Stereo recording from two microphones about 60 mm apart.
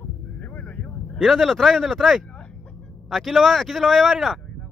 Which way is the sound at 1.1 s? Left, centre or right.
Centre.